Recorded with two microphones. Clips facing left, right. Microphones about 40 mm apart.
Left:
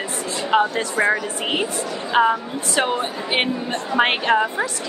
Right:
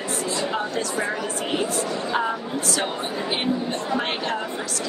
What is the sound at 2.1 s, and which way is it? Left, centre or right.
A woman's voice, left.